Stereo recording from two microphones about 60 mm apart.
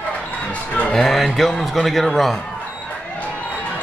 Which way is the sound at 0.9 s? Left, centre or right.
Centre.